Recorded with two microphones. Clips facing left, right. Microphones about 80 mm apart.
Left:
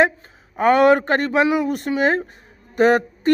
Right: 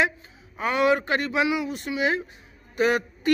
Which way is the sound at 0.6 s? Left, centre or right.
Left.